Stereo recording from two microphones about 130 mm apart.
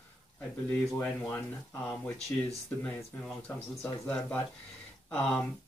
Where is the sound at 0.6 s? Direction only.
15° left (ahead or behind).